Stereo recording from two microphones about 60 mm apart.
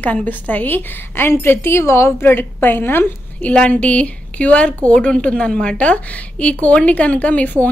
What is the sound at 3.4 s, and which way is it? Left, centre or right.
A woman's voice, left.